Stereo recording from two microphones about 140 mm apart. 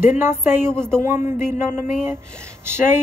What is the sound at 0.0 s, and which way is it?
Speech, 15° right (ahead or behind).